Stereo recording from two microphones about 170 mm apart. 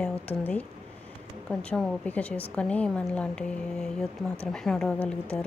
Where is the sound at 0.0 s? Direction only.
10° left (ahead or behind).